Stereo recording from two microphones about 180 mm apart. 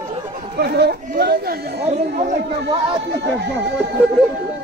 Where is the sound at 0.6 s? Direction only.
65° right (ahead or behind).